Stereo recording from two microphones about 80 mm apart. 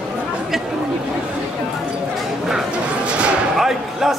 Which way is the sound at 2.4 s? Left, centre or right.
Centre.